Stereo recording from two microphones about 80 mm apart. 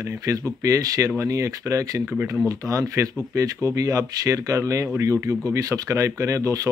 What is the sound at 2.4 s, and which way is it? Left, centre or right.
Speech, right.